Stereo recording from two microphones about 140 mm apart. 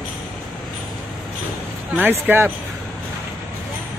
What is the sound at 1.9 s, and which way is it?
Speech, 15° right (ahead or behind).